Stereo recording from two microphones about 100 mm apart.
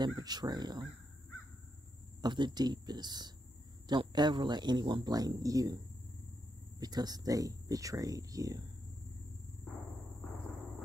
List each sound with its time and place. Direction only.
0.0 s speech: 40° right (ahead or behind)
2.2 s speech: 45° right (ahead or behind)
6.8 s speech: 40° right (ahead or behind)